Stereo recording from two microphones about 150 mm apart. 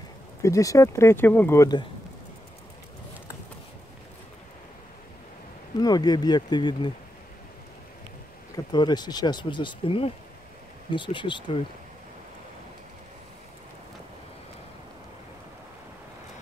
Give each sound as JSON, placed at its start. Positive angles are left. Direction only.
{"t": 0.4, "sound": "speech", "side_deg": 20}
{"t": 5.8, "sound": "speech", "side_deg": 25}
{"t": 8.7, "sound": "speech", "side_deg": 30}